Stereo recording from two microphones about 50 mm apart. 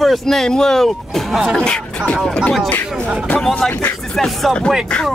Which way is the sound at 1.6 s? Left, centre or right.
Centre.